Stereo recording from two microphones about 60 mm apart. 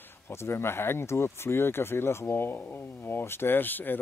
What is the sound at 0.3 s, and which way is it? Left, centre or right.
Speech, left.